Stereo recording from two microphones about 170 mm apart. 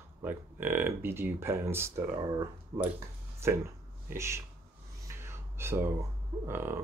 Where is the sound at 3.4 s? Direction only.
15° right (ahead or behind).